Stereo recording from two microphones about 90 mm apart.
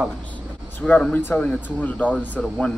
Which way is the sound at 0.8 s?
15° left (ahead or behind).